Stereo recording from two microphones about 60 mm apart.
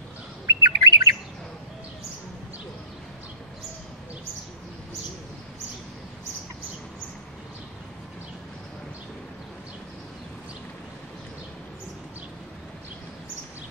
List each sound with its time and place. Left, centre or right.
0.5 s bird: right